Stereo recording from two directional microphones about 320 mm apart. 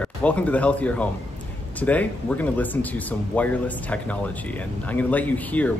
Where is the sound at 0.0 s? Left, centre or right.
Centre.